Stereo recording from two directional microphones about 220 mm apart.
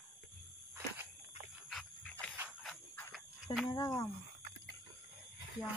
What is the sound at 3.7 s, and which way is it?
Speech, 15° left (ahead or behind).